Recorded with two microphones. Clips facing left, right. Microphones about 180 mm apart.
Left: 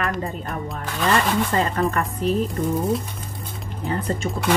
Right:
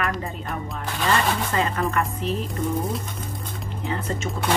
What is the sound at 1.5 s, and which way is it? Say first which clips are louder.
Speech: left 2 dB; 35° left (ahead or behind).